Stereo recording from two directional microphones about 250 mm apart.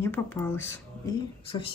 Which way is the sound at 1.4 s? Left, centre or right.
Left.